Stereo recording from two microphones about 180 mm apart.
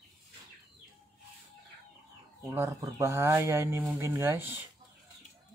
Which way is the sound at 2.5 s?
15° right (ahead or behind).